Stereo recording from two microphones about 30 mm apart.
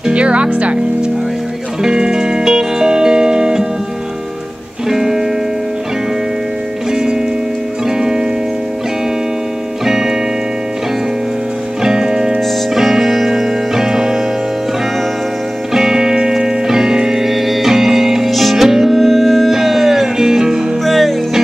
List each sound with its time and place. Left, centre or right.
0.1 s music: right
1.8 s music: centre
4.8 s music: centre
6.9 s music: centre
9.8 s music: centre
11.8 s music: centre
15.7 s music: centre
20.8 s music: centre